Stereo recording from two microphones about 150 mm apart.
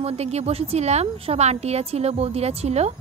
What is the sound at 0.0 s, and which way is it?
A woman's voice, 45° right (ahead or behind).